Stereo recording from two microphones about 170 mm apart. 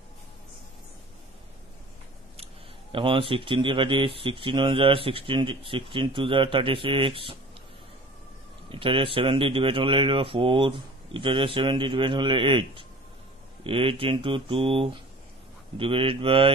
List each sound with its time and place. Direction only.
2.3 s a man's voice: 35° right (ahead or behind)
8.6 s a man's voice: 30° right (ahead or behind)